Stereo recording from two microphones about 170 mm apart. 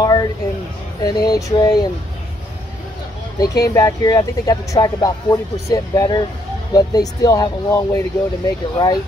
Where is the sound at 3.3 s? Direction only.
20° left (ahead or behind).